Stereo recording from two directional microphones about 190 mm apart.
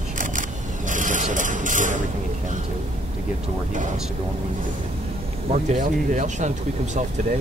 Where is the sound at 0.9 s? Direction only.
40° right (ahead or behind).